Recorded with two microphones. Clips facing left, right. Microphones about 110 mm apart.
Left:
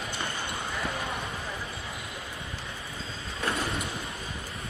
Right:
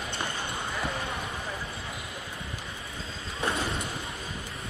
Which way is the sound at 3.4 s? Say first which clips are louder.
Right 1 dB; 25° right (ahead or behind).